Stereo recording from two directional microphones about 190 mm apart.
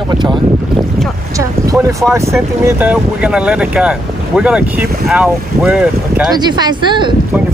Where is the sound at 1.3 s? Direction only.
15° right (ahead or behind).